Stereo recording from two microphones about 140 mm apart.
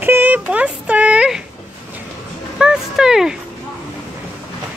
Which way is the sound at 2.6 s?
5° right (ahead or behind).